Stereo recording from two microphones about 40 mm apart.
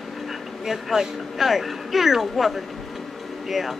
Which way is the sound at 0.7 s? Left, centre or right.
Centre.